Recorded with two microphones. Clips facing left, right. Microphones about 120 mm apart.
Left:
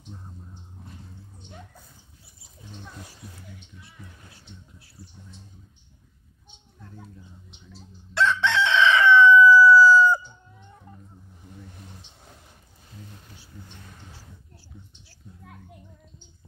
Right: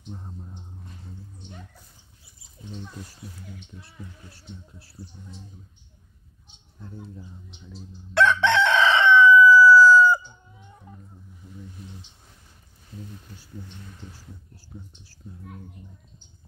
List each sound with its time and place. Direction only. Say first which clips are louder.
6.8 s speech: right 5 dB; 30° right (ahead or behind)
8.1 s chicken: right 3 dB; 55° right (ahead or behind)
8.8 s chicken: left 4 dB; 25° right (ahead or behind)
9.1 s chicken: even; 10° right (ahead or behind)